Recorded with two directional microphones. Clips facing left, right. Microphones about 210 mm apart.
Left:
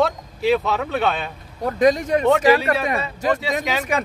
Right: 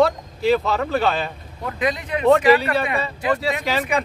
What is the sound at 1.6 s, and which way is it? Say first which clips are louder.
Speech: left 7 dB; 45° left (ahead or behind).